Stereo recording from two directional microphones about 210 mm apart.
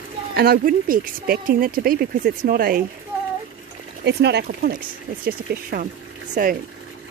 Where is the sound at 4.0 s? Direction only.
55° right (ahead or behind).